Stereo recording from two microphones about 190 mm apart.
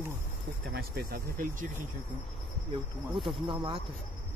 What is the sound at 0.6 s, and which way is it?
Speech, 55° right (ahead or behind).